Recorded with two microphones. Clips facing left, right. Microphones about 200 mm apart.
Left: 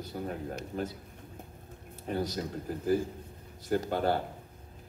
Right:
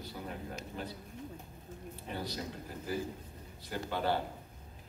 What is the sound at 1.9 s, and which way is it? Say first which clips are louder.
Speech: left 8 dB; 45° left (ahead or behind).